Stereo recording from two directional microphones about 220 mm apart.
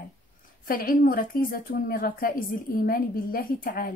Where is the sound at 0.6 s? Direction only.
40° left (ahead or behind).